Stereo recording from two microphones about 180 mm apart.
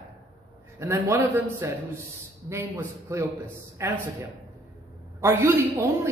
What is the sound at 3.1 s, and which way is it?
A woman's voice, 15° right (ahead or behind).